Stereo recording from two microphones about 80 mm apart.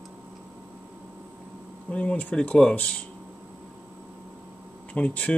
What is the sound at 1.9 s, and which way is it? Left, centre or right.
Speech, centre.